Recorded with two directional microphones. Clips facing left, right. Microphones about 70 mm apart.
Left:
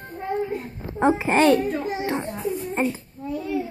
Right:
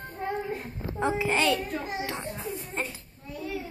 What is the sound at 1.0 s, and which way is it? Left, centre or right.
Speech, left.